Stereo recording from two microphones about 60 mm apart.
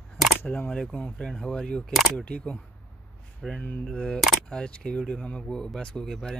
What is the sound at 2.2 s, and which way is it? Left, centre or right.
Speech, centre.